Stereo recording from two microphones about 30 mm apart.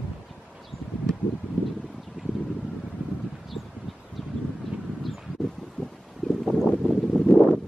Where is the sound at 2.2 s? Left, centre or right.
Right.